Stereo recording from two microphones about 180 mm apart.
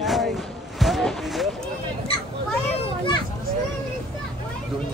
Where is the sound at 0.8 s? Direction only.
Centre (ahead or behind).